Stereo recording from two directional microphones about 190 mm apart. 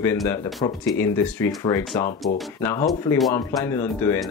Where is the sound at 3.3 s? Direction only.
15° left (ahead or behind).